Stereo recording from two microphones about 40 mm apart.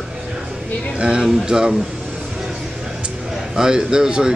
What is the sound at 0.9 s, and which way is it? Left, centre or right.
Speech, right.